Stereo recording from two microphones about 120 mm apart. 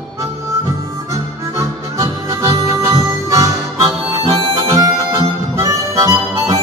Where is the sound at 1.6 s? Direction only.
25° right (ahead or behind).